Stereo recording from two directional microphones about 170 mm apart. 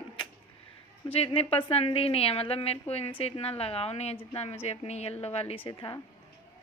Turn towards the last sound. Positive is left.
turn(degrees=30)  # may be behind; listen again after turning